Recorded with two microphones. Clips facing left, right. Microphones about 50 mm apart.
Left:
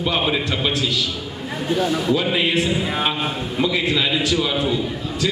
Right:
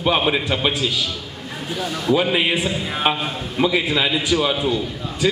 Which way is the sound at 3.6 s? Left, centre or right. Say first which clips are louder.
Right 2 dB; centre.